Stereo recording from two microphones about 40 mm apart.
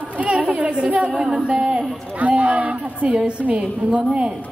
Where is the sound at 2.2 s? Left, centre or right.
Right.